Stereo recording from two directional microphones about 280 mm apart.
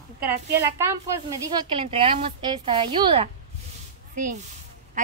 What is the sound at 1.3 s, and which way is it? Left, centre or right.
A woman's voice, centre.